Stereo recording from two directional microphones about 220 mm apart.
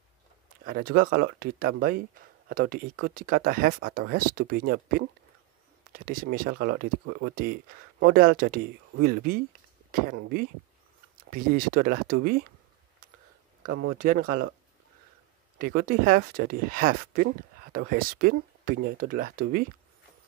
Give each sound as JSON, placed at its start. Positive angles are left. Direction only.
{"t": 0.7, "sound": "speech", "side_deg": -40}
{"t": 5.9, "sound": "speech", "side_deg": -40}
{"t": 13.7, "sound": "speech", "side_deg": -50}
{"t": 15.6, "sound": "speech", "side_deg": -40}